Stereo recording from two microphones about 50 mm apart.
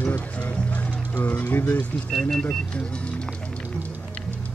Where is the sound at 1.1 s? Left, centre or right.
Left.